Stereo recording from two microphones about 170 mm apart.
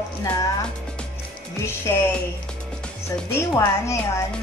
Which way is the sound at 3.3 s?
15° left (ahead or behind).